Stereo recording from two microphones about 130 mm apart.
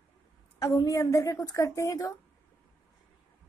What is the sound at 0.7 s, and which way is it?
A woman's voice, 25° left (ahead or behind).